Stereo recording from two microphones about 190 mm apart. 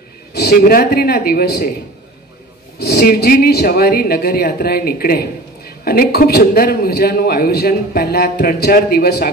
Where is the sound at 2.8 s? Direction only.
55° left (ahead or behind).